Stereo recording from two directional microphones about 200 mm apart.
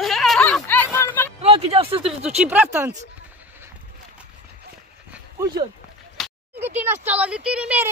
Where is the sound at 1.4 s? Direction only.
30° right (ahead or behind).